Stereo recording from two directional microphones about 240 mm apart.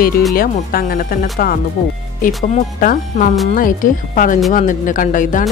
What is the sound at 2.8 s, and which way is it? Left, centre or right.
A woman's voice, left.